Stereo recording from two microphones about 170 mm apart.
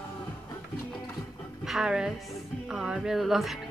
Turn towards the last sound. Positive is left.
turn(degrees=0)  # may be behind; listen again after turning